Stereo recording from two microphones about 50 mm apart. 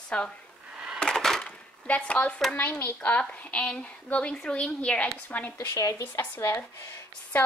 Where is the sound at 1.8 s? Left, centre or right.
Left.